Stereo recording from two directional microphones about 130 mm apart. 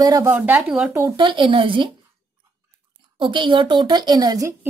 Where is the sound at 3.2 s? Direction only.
40° right (ahead or behind).